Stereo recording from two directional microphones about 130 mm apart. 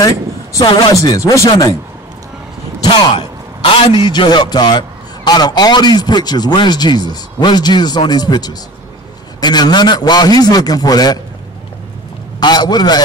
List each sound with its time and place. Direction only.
0.0 s speech: 30° left (ahead or behind)
2.8 s a man's voice: 35° left (ahead or behind)
12.4 s a man's voice: 30° left (ahead or behind)